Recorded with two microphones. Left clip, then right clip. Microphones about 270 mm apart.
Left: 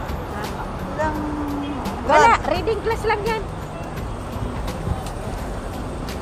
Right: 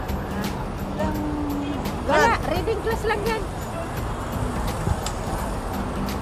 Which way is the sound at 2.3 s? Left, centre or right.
Left.